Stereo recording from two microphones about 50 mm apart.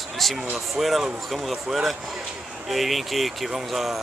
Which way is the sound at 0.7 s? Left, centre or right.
Centre.